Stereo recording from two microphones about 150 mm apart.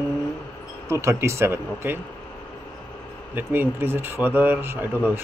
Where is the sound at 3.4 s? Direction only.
15° right (ahead or behind).